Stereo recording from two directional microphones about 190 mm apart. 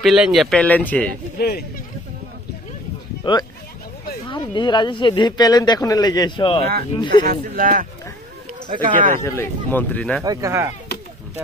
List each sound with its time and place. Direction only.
0.0 s speech: centre (ahead or behind)
3.3 s speech: 25° left (ahead or behind)
7.2 s speech: 45° right (ahead or behind)
9.2 s speech: 15° left (ahead or behind)
10.2 s speech: 20° right (ahead or behind)
10.9 s a sound: 60° left (ahead or behind)